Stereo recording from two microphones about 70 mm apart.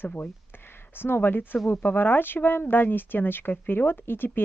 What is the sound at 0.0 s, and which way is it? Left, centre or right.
Speech, left.